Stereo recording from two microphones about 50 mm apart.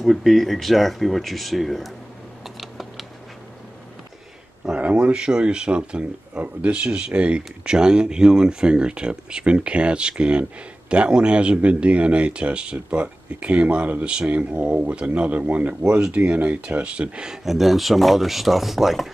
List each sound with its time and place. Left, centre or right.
0.0 s speech: centre
2.4 s typing: centre
4.7 s speech: right
17.3 s speech: centre